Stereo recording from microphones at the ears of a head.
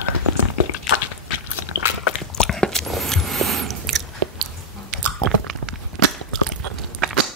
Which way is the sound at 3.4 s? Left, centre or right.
Right.